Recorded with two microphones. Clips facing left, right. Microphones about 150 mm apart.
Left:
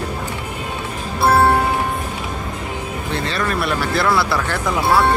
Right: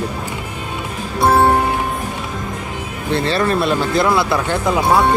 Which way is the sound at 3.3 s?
30° right (ahead or behind).